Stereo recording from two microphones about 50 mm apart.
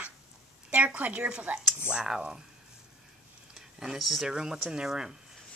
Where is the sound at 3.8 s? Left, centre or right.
Centre.